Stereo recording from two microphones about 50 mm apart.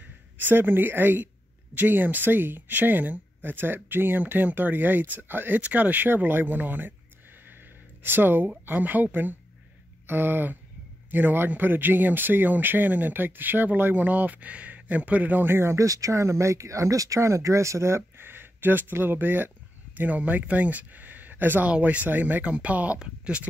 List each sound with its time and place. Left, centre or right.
0.0 s speech: right
8.0 s speech: right
15.4 s speech: right
15.7 s speech: right
18.2 s speech: right
21.6 s speech: right